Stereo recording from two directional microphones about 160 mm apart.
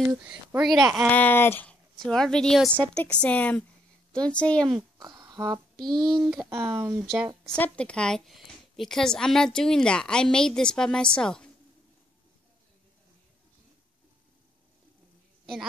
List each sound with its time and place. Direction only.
0.2 s a woman's voice: 5° right (ahead or behind)
1.1 s a woman's voice: 10° left (ahead or behind)
4.9 s a sound: 25° right (ahead or behind)
5.9 s a child's voice: 30° right (ahead or behind)
6.2 s a woman's voice: 5° right (ahead or behind)
6.5 s a woman's voice: 15° right (ahead or behind)
7.4 s a woman's voice: 5° left (ahead or behind)